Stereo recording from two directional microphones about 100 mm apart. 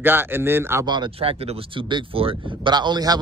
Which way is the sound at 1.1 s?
75° right (ahead or behind).